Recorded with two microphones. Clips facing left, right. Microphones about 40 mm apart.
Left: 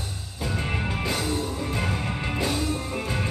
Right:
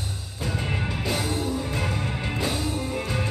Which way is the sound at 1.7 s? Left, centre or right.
Left.